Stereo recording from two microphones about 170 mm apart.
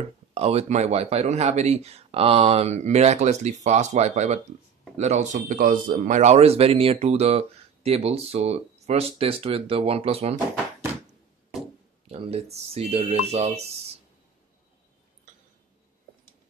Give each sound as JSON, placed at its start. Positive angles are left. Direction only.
{"t": 0.3, "sound": "a man's voice", "side_deg": -35}
{"t": 12.1, "sound": "a man's voice", "side_deg": -35}